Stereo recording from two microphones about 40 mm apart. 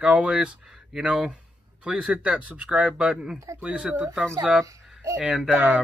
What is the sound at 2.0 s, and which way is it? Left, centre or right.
Speech, right.